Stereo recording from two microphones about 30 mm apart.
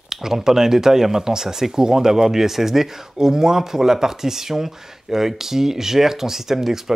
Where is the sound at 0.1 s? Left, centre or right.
Centre.